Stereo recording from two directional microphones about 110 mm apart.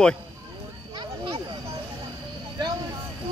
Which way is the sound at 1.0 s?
40° right (ahead or behind).